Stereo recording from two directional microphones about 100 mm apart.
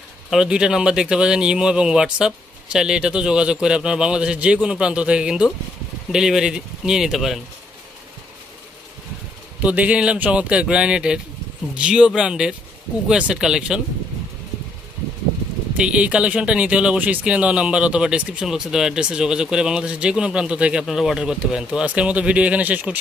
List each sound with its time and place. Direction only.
0.3 s speech: 5° right (ahead or behind)
9.6 s speech: 15° right (ahead or behind)
15.8 s speech: 10° right (ahead or behind)